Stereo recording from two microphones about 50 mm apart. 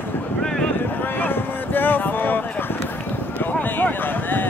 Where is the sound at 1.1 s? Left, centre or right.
Left.